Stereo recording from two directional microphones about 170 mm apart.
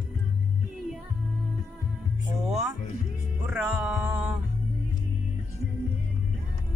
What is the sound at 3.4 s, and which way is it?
Music, 5° right (ahead or behind).